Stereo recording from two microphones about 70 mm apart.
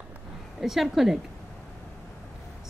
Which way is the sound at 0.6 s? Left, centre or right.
Centre.